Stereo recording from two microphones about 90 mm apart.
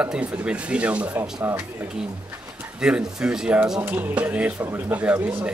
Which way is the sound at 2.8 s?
10° right (ahead or behind).